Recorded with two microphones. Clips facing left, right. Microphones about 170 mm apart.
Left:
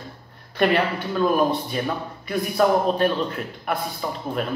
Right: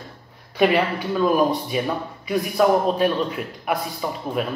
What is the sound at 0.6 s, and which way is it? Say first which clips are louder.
A man's voice: right 2 dB; 5° right (ahead or behind).